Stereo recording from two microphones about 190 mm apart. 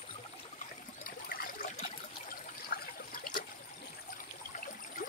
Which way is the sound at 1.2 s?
50° left (ahead or behind).